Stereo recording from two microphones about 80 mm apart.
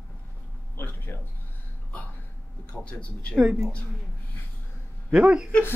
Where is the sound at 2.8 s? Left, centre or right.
Centre.